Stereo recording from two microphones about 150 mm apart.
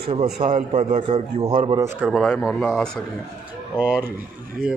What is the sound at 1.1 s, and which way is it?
Speech, 35° right (ahead or behind).